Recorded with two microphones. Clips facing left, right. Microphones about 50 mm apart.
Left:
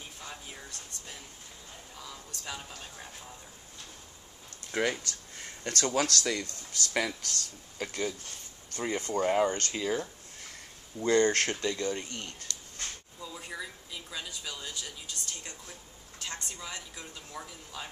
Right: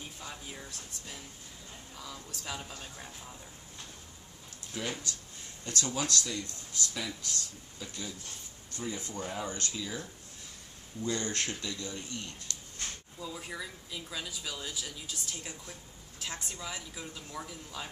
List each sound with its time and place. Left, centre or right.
0.2 s a sound: centre
2.0 s speech: centre
5.0 s a sound: left
5.9 s speech: left
7.1 s speech: left
11.0 s speech: left
13.2 s speech: centre